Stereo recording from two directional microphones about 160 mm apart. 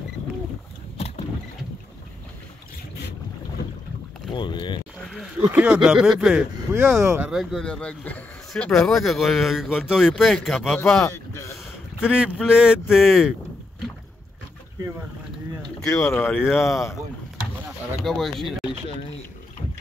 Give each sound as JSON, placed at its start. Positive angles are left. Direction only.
{"t": 4.3, "sound": "speech", "side_deg": 30}
{"t": 5.0, "sound": "speech", "side_deg": -5}
{"t": 6.7, "sound": "speech", "side_deg": -15}
{"t": 7.2, "sound": "speech", "side_deg": 0}
{"t": 11.1, "sound": "a sound", "side_deg": 20}
{"t": 12.0, "sound": "speech", "side_deg": -5}
{"t": 16.0, "sound": "speech", "side_deg": 15}
{"t": 16.5, "sound": "speech", "side_deg": 0}
{"t": 18.0, "sound": "speech", "side_deg": 0}